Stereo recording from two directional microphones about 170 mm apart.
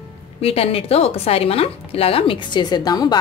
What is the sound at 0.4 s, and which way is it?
A woman's voice, 35° left (ahead or behind).